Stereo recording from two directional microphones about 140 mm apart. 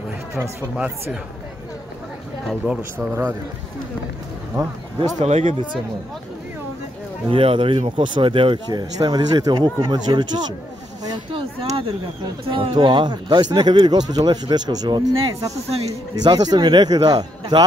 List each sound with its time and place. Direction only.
0.4 s speech: 10° right (ahead or behind)
2.4 s speech: 5° right (ahead or behind)
4.6 s speech: 30° right (ahead or behind)
5.2 s speech: 50° right (ahead or behind)
7.2 s speech: 40° right (ahead or behind)
11.1 s a sound: 40° right (ahead or behind)
12.4 s speech: 35° right (ahead or behind)